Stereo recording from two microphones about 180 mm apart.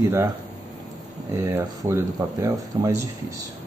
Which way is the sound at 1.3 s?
15° right (ahead or behind).